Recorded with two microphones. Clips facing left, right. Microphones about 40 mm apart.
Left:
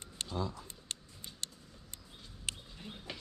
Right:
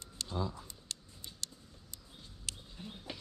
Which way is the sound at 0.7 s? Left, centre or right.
Left.